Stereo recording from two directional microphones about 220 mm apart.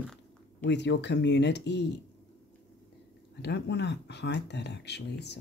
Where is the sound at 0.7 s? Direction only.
50° left (ahead or behind).